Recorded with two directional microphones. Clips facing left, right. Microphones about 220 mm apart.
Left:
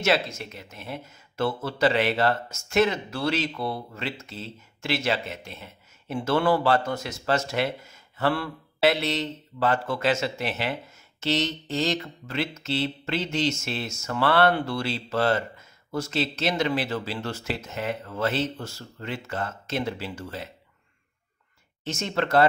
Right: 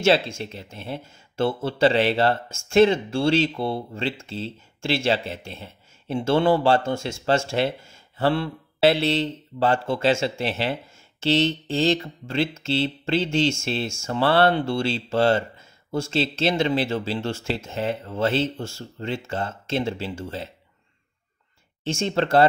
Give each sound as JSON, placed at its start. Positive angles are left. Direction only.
{"t": 0.0, "sound": "speech", "side_deg": -30}
{"t": 21.8, "sound": "speech", "side_deg": -30}